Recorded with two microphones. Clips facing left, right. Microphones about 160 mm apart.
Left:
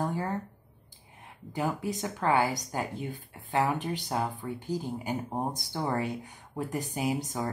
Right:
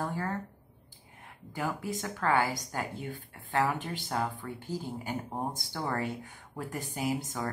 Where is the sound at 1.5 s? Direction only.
20° left (ahead or behind).